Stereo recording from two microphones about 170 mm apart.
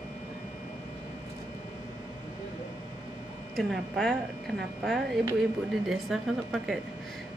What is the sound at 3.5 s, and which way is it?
Speech, centre (ahead or behind).